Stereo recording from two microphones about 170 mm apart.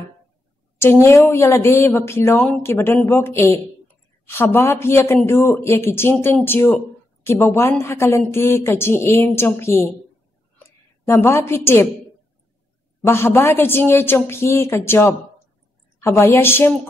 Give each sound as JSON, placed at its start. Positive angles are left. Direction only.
{"t": 0.7, "sound": "speech", "side_deg": 15}
{"t": 11.1, "sound": "speech", "side_deg": 15}
{"t": 13.0, "sound": "speech", "side_deg": 15}